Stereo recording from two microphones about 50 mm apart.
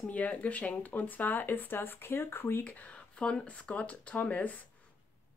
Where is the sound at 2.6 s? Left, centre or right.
Left.